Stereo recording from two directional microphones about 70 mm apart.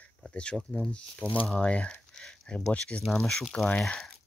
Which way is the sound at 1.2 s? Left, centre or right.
Centre.